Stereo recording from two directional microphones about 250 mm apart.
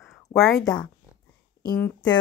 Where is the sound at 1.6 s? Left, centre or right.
Centre.